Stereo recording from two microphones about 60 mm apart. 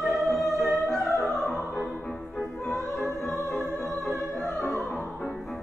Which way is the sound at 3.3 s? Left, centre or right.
Left.